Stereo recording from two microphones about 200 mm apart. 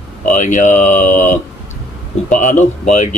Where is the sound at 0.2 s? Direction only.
40° left (ahead or behind).